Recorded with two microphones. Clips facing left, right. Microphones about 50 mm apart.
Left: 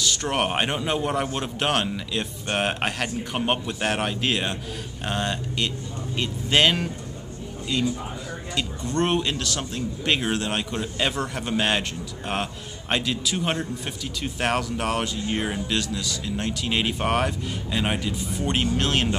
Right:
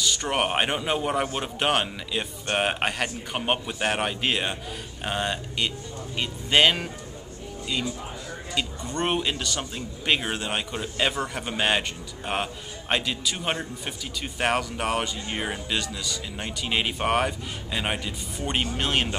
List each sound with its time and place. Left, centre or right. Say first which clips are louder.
0.0 s a man's voice: left 1 dB; centre
8.5 s a man's voice: left 3 dB; centre
12.9 s a man's voice: left 2 dB; centre